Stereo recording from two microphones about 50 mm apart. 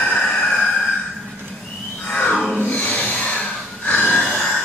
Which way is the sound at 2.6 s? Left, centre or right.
Left.